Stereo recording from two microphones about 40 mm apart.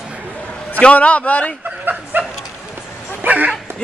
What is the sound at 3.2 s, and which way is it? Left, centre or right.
Speech, right.